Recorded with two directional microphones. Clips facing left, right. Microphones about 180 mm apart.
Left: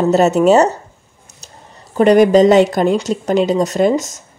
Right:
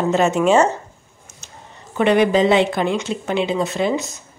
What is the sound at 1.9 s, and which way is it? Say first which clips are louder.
Speech: left 6 dB; 40° left (ahead or behind).